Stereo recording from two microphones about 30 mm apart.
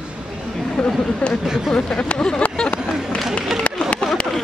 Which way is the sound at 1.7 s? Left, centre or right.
Left.